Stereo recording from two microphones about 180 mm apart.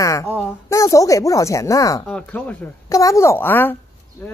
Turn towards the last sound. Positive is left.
turn(degrees=10)  # may be behind; listen again after turning